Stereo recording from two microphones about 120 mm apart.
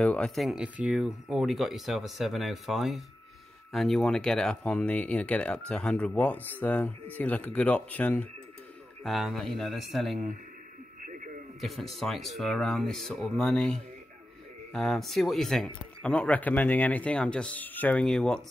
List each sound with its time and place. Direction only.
0.0 s speech: 10° left (ahead or behind)
9.0 s speech: centre (ahead or behind)
11.1 s radio: 90° right
11.6 s speech: centre (ahead or behind)